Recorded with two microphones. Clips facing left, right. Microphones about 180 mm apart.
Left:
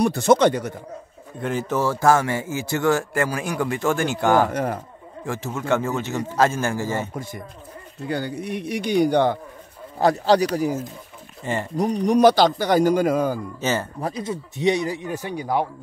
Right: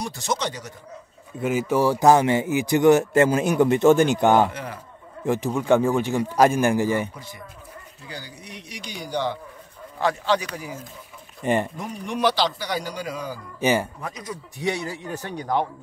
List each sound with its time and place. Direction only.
0.0 s speech: 60° left (ahead or behind)
1.4 s speech: 10° right (ahead or behind)
4.5 s speech: 45° left (ahead or behind)
5.2 s speech: 15° right (ahead or behind)
7.2 s speech: 45° left (ahead or behind)
9.9 s speech: 40° left (ahead or behind)
11.4 s speech: 20° right (ahead or behind)
11.7 s speech: 35° left (ahead or behind)
13.6 s speech: 15° right (ahead or behind)
14.0 s speech: 30° left (ahead or behind); by 15.7 s 10° left (ahead or behind)